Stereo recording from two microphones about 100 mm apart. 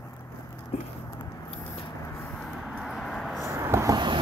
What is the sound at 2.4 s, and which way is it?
Vehicle, centre (ahead or behind).